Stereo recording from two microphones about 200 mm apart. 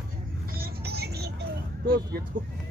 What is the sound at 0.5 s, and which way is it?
Vehicle, 50° right (ahead or behind).